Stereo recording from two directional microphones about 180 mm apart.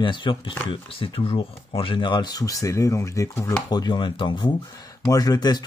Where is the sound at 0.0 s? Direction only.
25° left (ahead or behind).